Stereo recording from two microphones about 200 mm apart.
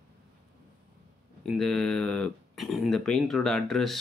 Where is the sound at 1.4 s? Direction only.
5° left (ahead or behind).